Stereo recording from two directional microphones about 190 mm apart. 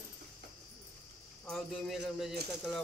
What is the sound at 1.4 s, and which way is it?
Speech, 5° left (ahead or behind).